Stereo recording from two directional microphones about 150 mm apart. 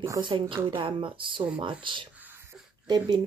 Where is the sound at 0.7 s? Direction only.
35° right (ahead or behind).